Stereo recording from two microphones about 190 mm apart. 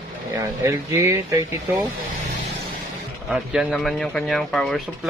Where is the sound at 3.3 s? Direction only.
Centre (ahead or behind).